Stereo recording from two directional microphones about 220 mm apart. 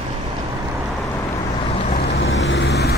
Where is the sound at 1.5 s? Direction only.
30° left (ahead or behind).